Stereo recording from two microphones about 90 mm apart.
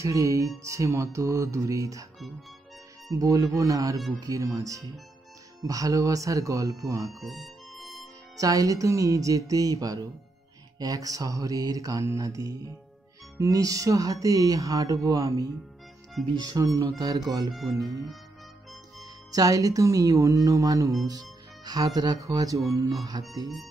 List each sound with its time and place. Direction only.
0.0 s speech: 35° right (ahead or behind)
3.1 s speech: 40° right (ahead or behind)
7.1 s music: centre (ahead or behind)
8.4 s speech: 40° right (ahead or behind)
17.5 s speech: centre (ahead or behind)
18.9 s speech: 40° right (ahead or behind)
23.2 s music: 55° right (ahead or behind)